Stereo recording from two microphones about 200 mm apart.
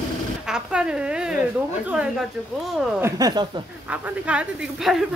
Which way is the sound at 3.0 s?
20° right (ahead or behind).